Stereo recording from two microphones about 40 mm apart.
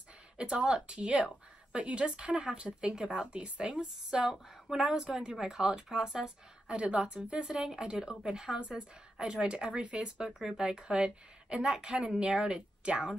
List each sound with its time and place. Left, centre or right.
0.4 s speech: right
6.7 s speech: right